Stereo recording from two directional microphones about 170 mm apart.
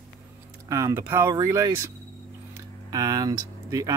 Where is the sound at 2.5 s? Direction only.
20° right (ahead or behind).